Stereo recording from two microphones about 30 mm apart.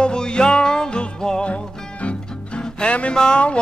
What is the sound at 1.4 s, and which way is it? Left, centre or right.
Music, left.